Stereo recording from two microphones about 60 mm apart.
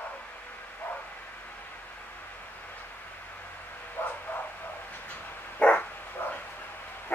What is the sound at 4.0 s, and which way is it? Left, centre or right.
Bow-wow, left.